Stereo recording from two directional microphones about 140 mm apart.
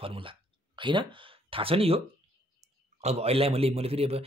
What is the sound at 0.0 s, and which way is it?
A man's voice, 40° right (ahead or behind).